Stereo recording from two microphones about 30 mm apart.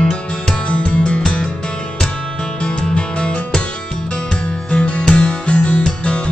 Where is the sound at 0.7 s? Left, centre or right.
Left.